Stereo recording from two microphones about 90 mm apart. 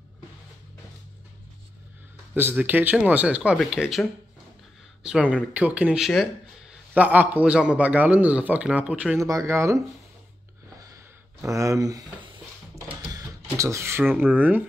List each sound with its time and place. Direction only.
2.5 s a man's voice: 20° right (ahead or behind)
3.5 s speech: 5° right (ahead or behind)
5.0 s a man's voice: 5° right (ahead or behind)
9.2 s speech: 35° right (ahead or behind)
11.4 s speech: 35° right (ahead or behind)
13.1 s speech: 35° right (ahead or behind)